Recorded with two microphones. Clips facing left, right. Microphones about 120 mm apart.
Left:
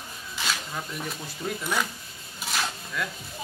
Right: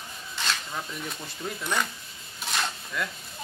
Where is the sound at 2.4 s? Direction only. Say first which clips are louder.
Even; centre (ahead or behind).